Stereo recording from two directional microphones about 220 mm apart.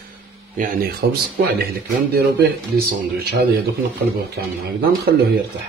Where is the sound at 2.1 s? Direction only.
45° right (ahead or behind).